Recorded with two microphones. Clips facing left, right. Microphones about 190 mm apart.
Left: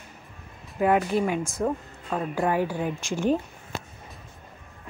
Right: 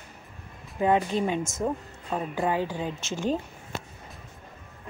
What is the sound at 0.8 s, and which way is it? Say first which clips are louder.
Speech: left 2 dB; 20° right (ahead or behind).